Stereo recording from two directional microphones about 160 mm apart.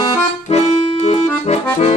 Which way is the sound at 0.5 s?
45° left (ahead or behind).